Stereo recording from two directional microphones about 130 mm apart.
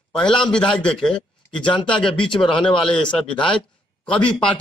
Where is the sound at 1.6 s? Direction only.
40° left (ahead or behind).